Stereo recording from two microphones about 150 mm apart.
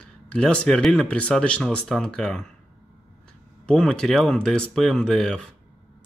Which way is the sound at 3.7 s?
5° left (ahead or behind).